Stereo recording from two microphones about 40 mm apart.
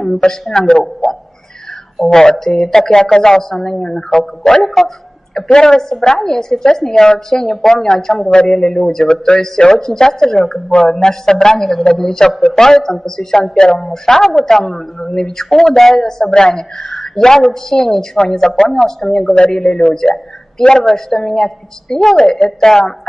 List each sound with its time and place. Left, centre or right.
0.3 s a woman's voice: centre
4.6 s dog: centre
5.5 s speech: centre
5.8 s a woman's voice: centre
13.4 s speech: left
14.0 s a woman's voice: centre
19.2 s speech: left
19.7 s a woman's voice: centre